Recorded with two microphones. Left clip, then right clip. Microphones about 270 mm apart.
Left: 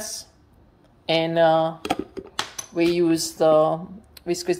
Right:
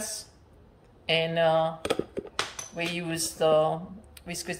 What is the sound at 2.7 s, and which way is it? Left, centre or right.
Speech, left.